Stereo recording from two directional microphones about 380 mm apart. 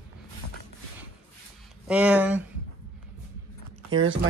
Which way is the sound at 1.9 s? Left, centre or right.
Centre.